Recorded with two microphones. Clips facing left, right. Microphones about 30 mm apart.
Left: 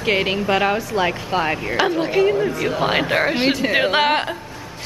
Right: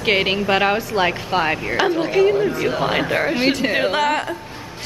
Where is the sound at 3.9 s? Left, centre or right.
Left.